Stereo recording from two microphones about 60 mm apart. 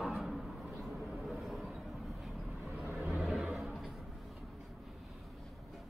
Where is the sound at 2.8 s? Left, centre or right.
Centre.